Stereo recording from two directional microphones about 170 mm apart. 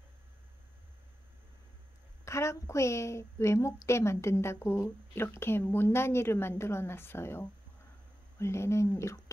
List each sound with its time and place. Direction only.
2.2 s a woman's voice: 15° left (ahead or behind)